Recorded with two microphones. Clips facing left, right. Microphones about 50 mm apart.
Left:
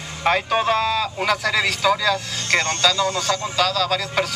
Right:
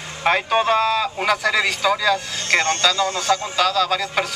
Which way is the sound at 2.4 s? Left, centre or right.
Right.